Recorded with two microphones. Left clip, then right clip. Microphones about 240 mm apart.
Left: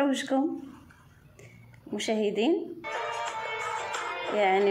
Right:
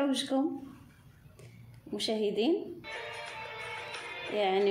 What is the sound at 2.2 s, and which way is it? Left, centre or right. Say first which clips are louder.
Speech: left 3 dB; left.